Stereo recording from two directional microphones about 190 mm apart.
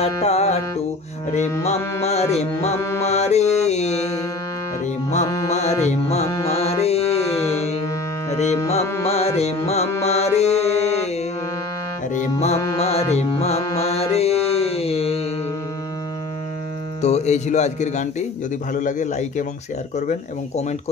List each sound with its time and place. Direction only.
0.0 s music: 35° left (ahead or behind)
1.6 s a man's voice: 35° left (ahead or behind)
3.1 s mantra: 35° left (ahead or behind)
5.2 s music: 15° left (ahead or behind)
5.5 s music: 35° left (ahead or behind)
8.3 s carnatic music: 35° left (ahead or behind)
9.0 s music: 30° left (ahead or behind)
12.1 s music: 40° left (ahead or behind)
13.7 s mantra: 35° left (ahead or behind)
17.0 s a man's voice: 35° left (ahead or behind)